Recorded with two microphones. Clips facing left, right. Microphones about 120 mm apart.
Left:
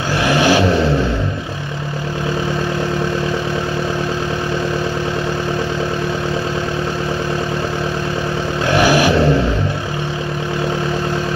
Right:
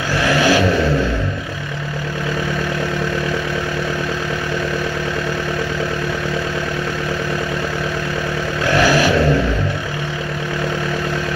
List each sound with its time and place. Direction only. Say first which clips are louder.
0.3 s vehicle: left 1 dB; 25° left (ahead or behind)
8.7 s vehicle: left 1 dB; 15° left (ahead or behind)